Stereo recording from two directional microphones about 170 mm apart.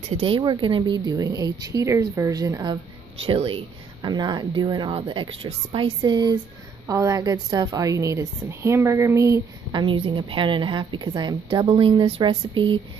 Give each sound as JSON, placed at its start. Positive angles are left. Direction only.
{"t": 0.4, "sound": "a woman's voice", "side_deg": -25}
{"t": 9.8, "sound": "speech", "side_deg": -30}